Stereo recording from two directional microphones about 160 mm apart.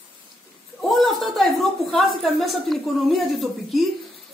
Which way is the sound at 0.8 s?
Centre (ahead or behind).